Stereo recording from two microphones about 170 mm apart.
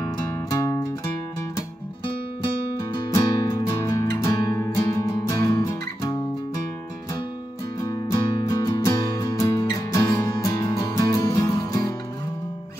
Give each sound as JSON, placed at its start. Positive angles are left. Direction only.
{"t": 0.5, "sound": "music", "side_deg": 20}
{"t": 3.1, "sound": "music", "side_deg": 20}
{"t": 7.8, "sound": "music", "side_deg": 20}